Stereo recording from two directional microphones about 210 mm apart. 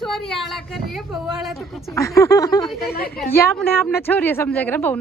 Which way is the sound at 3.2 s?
5° left (ahead or behind).